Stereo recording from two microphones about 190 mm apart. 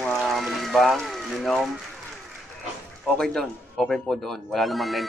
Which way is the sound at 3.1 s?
Centre (ahead or behind).